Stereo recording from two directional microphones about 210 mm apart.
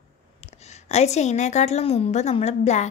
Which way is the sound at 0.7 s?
30° left (ahead or behind).